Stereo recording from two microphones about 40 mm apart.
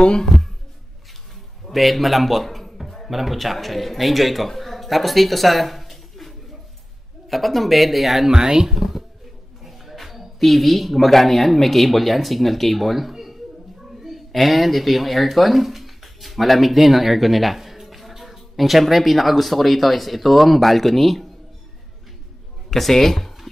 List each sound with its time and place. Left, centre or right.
1.7 s music: centre
3.1 s speech: centre
8.3 s speech: centre
8.6 s speech: centre
22.7 s speech: centre